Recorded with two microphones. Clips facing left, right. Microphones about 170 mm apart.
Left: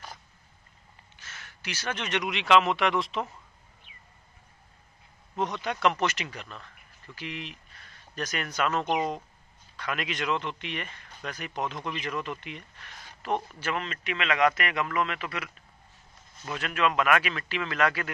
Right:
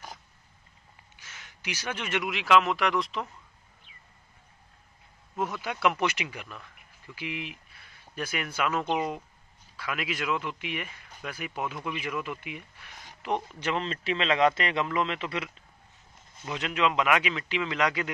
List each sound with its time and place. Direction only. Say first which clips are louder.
1.1 s speech: left 2 dB; 15° right (ahead or behind)
5.3 s a man's voice: left 2 dB; 5° right (ahead or behind)
13.8 s a man's voice: right 3 dB; 30° right (ahead or behind)